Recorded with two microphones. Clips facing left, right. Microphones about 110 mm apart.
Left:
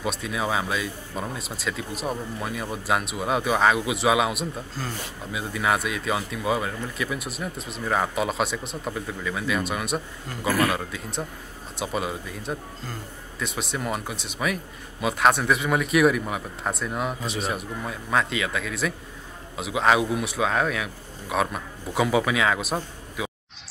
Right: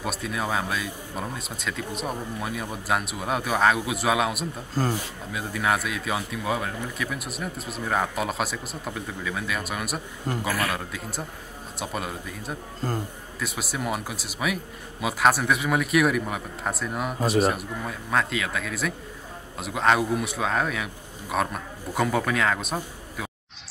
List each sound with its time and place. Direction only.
0.0 s speech: centre (ahead or behind)
4.8 s speech: 45° right (ahead or behind)
5.3 s speech: centre (ahead or behind)
12.8 s speech: 45° right (ahead or behind)
13.4 s speech: 5° right (ahead or behind)